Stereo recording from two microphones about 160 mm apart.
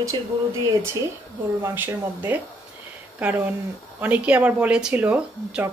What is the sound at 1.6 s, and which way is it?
Speech, 10° right (ahead or behind).